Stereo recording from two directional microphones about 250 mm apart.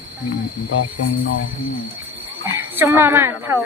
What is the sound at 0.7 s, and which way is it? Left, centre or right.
Speech, left.